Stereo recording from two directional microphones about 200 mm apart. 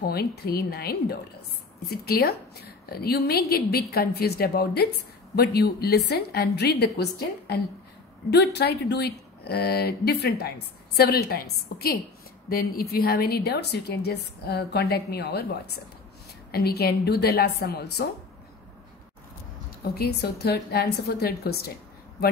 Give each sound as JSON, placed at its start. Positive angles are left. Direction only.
{"t": 0.0, "sound": "a woman's voice", "side_deg": 50}
{"t": 19.8, "sound": "a woman's voice", "side_deg": 55}